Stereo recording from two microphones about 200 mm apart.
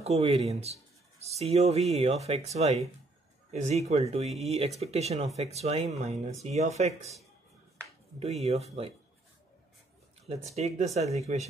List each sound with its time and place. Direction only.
0.0 s speech: 30° right (ahead or behind)
8.2 s speech: 30° right (ahead or behind)
10.2 s speech: 35° right (ahead or behind)